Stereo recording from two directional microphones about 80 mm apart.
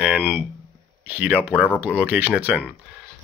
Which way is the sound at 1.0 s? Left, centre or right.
Centre.